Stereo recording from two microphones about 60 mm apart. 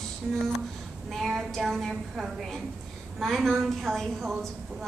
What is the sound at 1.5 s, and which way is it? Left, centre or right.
A woman's voice, centre.